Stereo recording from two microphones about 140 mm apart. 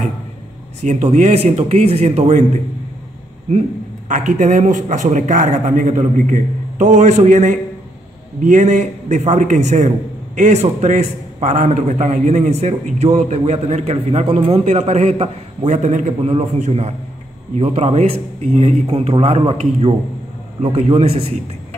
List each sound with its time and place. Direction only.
0.8 s a man's voice: 55° right (ahead or behind)
4.1 s a man's voice: 65° right (ahead or behind)